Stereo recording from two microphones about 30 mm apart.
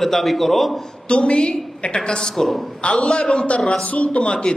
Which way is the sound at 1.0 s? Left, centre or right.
Left.